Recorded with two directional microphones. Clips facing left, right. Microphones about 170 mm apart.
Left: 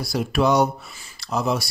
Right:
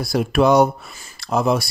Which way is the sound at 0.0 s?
55° right (ahead or behind).